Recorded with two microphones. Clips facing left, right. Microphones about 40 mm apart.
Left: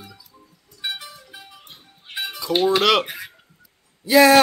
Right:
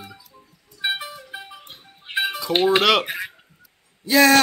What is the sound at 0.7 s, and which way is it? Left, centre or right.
Music, right.